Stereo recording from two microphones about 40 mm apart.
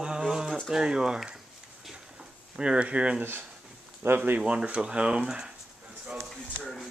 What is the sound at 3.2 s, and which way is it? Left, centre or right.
Speech, right.